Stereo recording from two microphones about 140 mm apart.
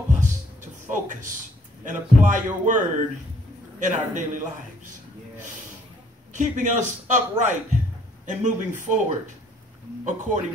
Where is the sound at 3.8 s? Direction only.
65° right (ahead or behind).